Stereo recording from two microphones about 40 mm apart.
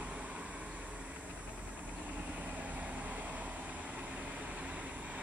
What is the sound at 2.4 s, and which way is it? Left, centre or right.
Vehicle, right.